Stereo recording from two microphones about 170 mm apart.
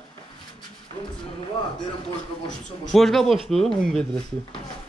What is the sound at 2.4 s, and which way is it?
Speech, centre (ahead or behind).